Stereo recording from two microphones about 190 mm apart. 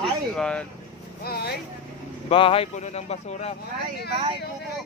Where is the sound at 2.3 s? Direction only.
30° left (ahead or behind).